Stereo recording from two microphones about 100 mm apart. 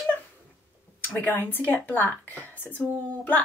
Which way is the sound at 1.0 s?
20° left (ahead or behind).